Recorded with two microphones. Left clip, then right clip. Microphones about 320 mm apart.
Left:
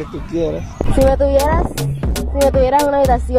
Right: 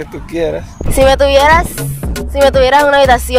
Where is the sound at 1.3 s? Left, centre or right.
Right.